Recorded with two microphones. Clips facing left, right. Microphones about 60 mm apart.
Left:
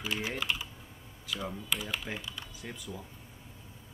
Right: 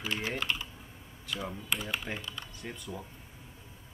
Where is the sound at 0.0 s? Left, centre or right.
Centre.